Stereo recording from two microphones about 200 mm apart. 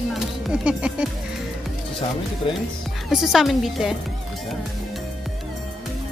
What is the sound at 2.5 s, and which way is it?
Speech, 25° left (ahead or behind).